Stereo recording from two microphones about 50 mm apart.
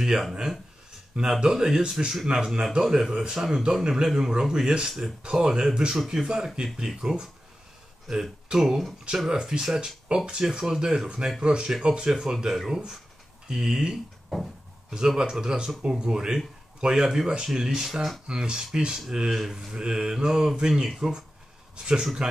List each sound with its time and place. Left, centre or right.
0.0 s speech: centre
14.3 s a sound: centre
15.1 s speech: centre
18.2 s a man's voice: centre